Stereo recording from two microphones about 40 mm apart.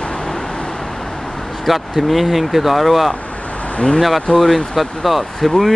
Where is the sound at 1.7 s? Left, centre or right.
Centre.